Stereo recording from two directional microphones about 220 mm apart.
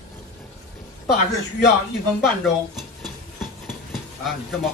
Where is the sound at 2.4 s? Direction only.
Centre (ahead or behind).